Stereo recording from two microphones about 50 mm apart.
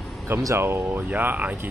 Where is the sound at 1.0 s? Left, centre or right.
Right.